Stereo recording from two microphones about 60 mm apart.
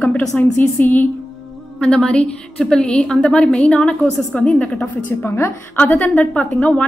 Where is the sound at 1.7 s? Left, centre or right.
Centre.